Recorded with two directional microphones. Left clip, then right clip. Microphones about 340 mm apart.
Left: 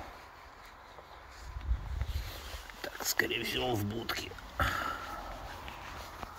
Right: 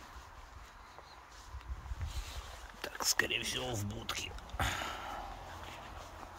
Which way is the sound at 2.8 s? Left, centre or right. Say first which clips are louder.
Left 1 dB; centre.